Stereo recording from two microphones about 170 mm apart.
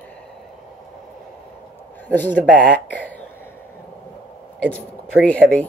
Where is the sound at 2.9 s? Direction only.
10° left (ahead or behind).